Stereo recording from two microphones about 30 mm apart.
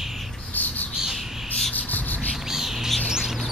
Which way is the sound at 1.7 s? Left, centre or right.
Left.